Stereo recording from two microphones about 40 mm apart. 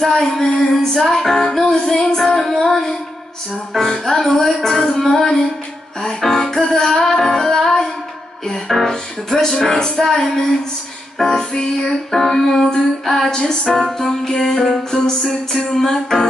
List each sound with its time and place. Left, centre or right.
0.0 s music: centre
13.3 s music: left
13.8 s music: centre